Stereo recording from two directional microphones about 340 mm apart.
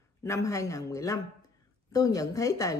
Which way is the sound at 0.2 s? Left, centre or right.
Centre.